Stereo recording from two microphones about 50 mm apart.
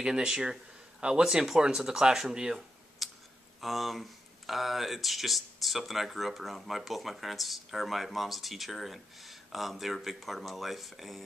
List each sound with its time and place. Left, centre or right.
0.0 s speech: centre
3.0 s a sound: centre
3.6 s speech: centre